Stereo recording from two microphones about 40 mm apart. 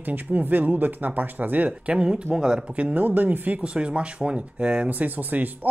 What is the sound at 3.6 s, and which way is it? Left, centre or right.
Speech, right.